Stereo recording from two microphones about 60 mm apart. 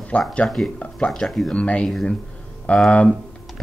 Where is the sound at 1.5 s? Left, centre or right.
Centre.